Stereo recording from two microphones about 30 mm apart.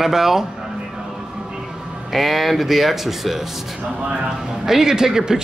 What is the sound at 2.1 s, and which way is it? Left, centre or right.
Speech, centre.